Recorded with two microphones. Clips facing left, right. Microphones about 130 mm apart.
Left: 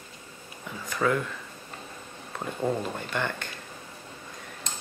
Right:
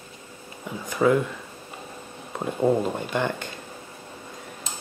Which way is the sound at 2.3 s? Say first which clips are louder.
Right 7 dB; 20° right (ahead or behind).